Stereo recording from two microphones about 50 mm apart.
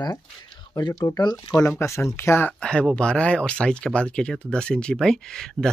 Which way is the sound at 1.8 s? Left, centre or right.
Left.